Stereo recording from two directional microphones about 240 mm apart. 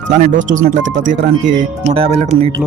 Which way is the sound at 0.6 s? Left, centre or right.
Right.